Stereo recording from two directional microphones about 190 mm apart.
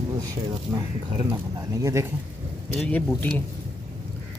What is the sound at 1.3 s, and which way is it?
Speech, 15° right (ahead or behind).